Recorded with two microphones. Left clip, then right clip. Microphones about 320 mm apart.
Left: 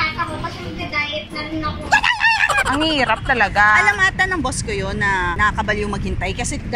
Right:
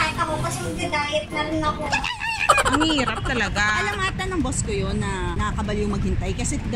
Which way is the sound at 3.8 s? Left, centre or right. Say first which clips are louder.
Left 10 dB; centre.